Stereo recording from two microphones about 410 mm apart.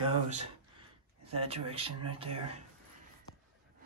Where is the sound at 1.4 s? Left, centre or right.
Centre.